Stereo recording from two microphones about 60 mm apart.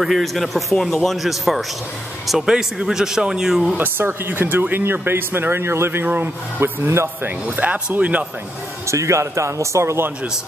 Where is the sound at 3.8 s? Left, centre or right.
Right.